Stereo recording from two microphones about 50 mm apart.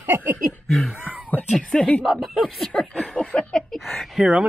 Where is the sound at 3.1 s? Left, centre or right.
Centre.